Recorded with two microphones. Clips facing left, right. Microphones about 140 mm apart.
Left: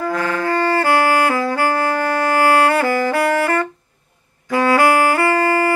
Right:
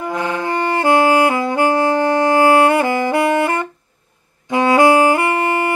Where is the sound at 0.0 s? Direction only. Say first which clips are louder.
Left 1 dB; 20° right (ahead or behind).